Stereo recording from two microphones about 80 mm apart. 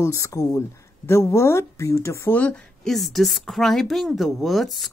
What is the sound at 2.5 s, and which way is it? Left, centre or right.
Speech, centre.